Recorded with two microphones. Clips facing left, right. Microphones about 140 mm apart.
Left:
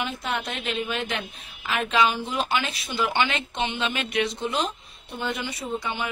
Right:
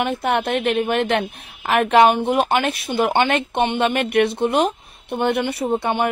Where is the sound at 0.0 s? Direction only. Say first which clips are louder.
Right 9 dB; 60° right (ahead or behind).